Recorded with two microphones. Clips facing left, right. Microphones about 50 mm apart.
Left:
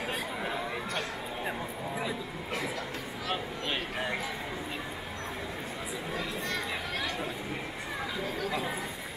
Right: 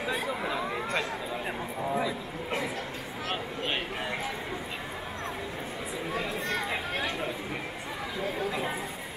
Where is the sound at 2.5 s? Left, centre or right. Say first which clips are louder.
Right 2 dB; right.